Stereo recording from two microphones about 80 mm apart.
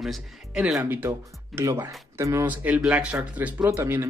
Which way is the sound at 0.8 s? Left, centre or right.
Right.